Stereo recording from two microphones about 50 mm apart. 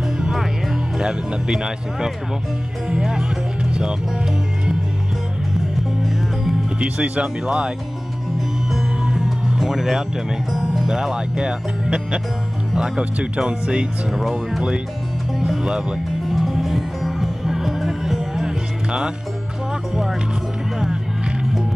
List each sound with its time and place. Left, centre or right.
0.3 s music: centre
1.0 s speech: centre
6.8 s speech: right
8.7 s music: centre
9.6 s speech: centre
14.1 s speech: centre
15.3 s music: centre
20.8 s music: centre